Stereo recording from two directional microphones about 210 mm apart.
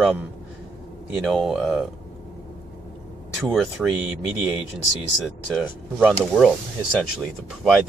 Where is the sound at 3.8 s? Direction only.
Centre (ahead or behind).